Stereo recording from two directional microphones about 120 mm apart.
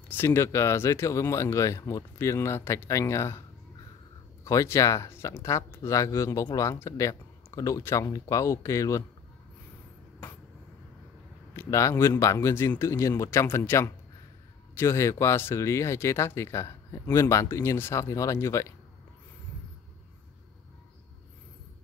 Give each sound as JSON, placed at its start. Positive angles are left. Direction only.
{"t": 0.1, "sound": "speech", "side_deg": 20}
{"t": 4.5, "sound": "speech", "side_deg": 25}
{"t": 11.5, "sound": "speech", "side_deg": 25}